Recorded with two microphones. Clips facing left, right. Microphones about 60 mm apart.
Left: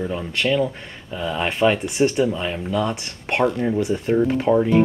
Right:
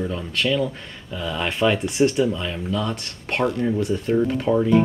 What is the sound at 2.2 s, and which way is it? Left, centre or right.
Speech, left.